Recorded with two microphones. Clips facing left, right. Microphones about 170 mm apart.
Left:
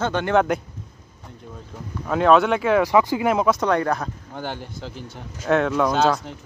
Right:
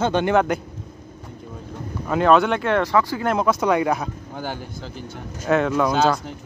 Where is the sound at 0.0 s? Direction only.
20° right (ahead or behind).